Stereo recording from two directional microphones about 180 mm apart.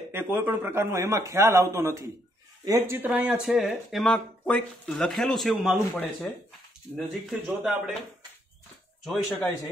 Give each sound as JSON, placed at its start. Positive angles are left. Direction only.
{"t": 0.1, "sound": "speech", "side_deg": -10}
{"t": 3.0, "sound": "speech", "side_deg": -5}
{"t": 7.2, "sound": "speech", "side_deg": 0}
{"t": 9.0, "sound": "speech", "side_deg": 0}